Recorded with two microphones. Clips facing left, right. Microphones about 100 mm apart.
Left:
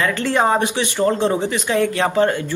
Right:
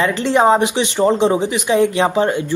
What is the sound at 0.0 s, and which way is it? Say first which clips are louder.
Speech: right 4 dB; 20° right (ahead or behind).